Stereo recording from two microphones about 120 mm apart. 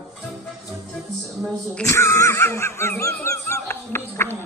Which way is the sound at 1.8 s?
25° left (ahead or behind).